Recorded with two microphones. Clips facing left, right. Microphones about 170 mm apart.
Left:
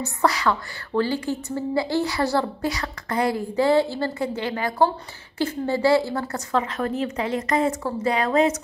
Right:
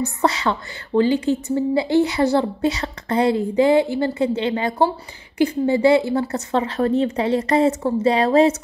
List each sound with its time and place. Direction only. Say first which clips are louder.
0.0 s a woman's voice: right 2 dB; 25° right (ahead or behind)